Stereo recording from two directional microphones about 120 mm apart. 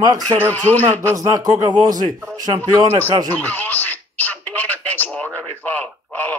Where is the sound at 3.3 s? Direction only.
15° left (ahead or behind).